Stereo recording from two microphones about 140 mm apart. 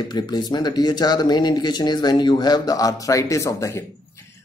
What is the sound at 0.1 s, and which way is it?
Speech, 30° left (ahead or behind).